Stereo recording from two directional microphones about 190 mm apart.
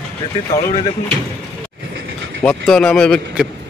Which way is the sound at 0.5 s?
15° left (ahead or behind).